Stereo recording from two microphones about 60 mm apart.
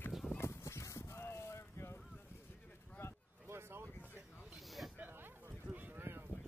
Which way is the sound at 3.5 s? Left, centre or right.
Right.